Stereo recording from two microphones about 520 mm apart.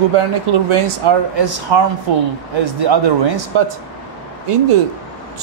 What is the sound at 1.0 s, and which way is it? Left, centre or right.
Speech, right.